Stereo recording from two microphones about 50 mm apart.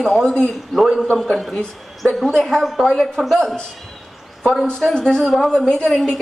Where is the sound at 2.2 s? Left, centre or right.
Centre.